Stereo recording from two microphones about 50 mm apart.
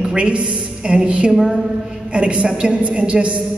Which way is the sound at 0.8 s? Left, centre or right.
Centre.